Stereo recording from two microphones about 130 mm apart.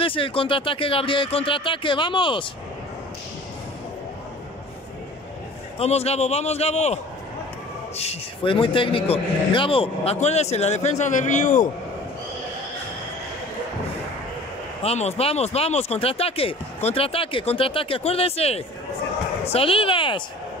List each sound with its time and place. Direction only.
0.0 s speech: 45° left (ahead or behind)
5.8 s a man's voice: 55° left (ahead or behind)
8.0 s a man's voice: 50° left (ahead or behind); by 11.7 s 75° left (ahead or behind)
14.8 s speech: 55° left (ahead or behind)